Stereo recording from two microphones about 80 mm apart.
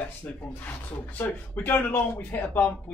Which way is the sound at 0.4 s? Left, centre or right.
Centre.